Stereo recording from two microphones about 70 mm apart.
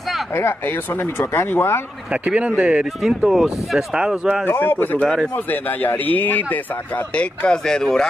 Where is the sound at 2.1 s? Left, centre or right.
Centre.